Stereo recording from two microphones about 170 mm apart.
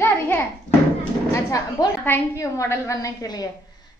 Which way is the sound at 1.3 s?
15° left (ahead or behind).